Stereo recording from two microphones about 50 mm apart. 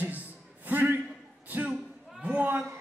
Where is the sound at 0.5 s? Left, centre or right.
Right.